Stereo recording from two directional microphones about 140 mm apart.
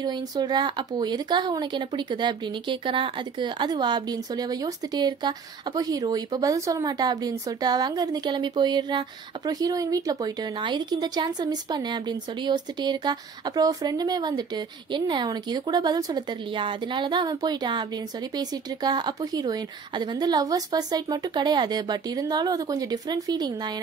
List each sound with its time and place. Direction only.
0.0 s a woman's voice: 30° right (ahead or behind)